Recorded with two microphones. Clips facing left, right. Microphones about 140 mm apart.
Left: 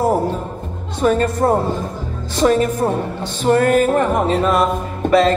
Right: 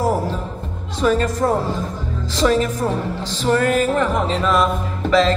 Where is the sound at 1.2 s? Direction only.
60° left (ahead or behind).